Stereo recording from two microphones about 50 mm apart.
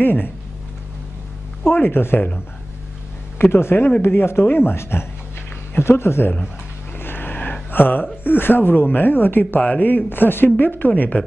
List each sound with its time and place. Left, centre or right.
0.0 s speech: left
1.6 s a man's voice: left
3.5 s a man's voice: left
4.7 s a man's voice: left
7.0 s a sound: left
7.7 s speech: left
9.6 s speech: left
9.8 s speech: left